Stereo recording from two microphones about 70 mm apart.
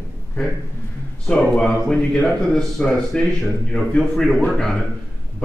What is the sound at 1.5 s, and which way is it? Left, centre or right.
A man's voice, centre.